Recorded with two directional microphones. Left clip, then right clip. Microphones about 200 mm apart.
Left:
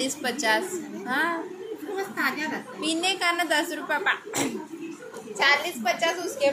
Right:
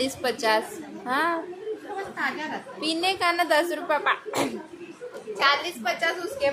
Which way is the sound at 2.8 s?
20° right (ahead or behind).